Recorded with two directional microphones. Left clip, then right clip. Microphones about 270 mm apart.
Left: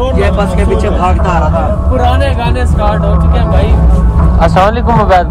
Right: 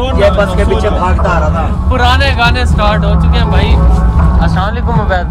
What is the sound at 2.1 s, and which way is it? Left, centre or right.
Speech, centre.